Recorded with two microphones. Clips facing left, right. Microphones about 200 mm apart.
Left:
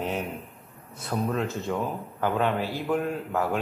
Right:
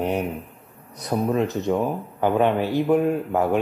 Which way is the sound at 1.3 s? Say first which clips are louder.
Right 9 dB; 20° right (ahead or behind).